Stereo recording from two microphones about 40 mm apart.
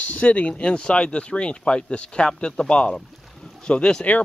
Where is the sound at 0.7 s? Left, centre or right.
Left.